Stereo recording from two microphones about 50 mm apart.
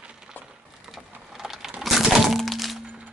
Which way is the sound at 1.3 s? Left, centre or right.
Centre.